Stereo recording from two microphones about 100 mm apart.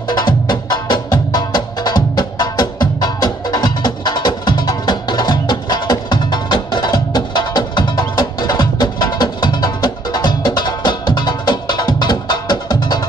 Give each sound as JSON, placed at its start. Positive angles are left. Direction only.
{"t": 0.1, "sound": "music", "side_deg": 45}